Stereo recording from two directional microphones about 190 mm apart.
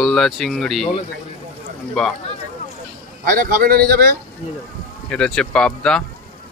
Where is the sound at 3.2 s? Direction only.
50° right (ahead or behind).